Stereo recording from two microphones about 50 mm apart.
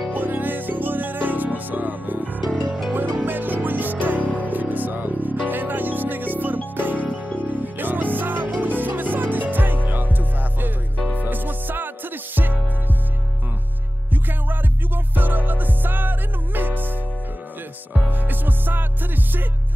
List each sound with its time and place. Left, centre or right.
0.1 s music: right
7.0 s music: left
7.4 s music: right
11.2 s music: right
15.1 s music: right
18.1 s music: right